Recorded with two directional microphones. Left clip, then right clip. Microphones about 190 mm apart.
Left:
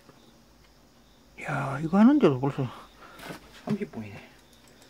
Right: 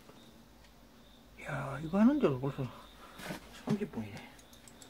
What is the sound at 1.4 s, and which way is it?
Speech, 40° left (ahead or behind).